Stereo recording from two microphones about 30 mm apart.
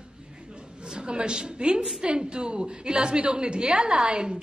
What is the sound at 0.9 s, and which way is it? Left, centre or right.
A man's voice, right.